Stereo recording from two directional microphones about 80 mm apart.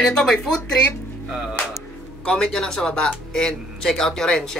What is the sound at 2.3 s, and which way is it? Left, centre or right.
Speech, centre.